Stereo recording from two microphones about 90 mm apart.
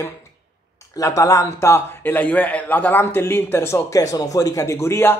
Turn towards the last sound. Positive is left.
turn(degrees=30)  # may be behind; listen again after turning